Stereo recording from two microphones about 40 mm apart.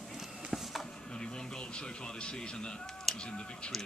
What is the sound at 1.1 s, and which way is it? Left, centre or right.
A man's voice, left.